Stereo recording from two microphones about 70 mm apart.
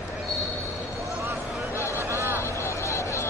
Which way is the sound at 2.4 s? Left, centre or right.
Left.